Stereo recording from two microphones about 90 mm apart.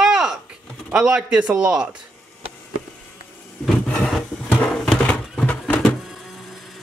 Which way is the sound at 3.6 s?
10° left (ahead or behind).